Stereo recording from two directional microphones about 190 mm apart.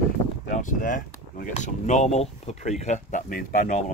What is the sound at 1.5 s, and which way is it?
Rub, 35° left (ahead or behind).